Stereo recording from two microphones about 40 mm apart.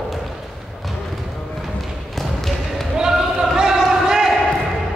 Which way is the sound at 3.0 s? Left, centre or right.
Centre.